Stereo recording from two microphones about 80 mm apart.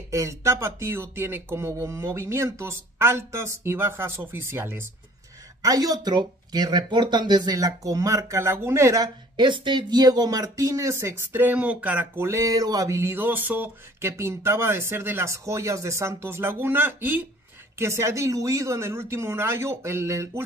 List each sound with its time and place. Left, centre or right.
0.1 s speech: right
5.6 s speech: right
9.0 s speech: right; by 12.1 s centre
12.2 s speech: right
14.0 s speech: right
17.7 s speech: right